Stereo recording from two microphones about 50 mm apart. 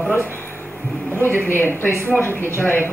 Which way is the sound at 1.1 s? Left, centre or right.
Left.